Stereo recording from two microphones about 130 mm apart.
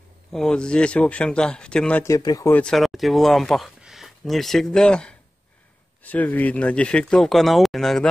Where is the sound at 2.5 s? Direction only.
10° left (ahead or behind).